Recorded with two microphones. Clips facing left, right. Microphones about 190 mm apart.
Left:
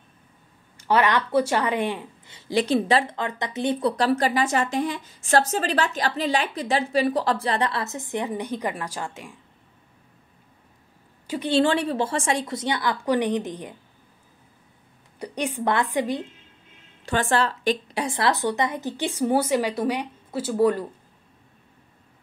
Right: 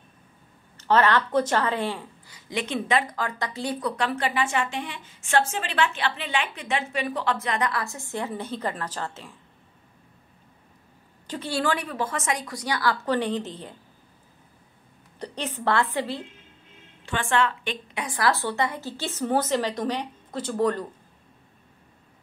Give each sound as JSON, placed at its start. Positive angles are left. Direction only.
{"t": 0.7, "sound": "speech", "side_deg": 10}
{"t": 3.9, "sound": "a woman's voice", "side_deg": 40}
{"t": 11.2, "sound": "speech", "side_deg": 15}
{"t": 15.1, "sound": "a woman's voice", "side_deg": 10}
{"t": 17.0, "sound": "a woman's voice", "side_deg": 40}